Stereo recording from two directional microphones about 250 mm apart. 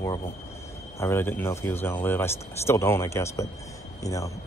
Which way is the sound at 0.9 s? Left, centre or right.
Centre.